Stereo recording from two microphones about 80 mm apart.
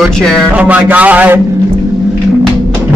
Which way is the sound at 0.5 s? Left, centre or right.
Centre.